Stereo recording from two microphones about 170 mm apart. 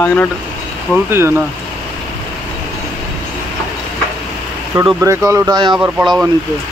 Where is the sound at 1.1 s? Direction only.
15° right (ahead or behind).